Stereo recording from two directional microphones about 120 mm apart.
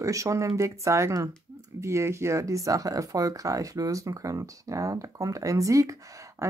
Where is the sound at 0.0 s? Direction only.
25° right (ahead or behind).